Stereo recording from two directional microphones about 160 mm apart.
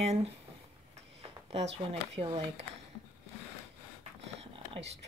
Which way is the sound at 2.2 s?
35° right (ahead or behind).